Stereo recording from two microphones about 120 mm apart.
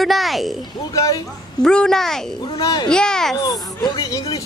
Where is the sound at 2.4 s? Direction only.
35° left (ahead or behind).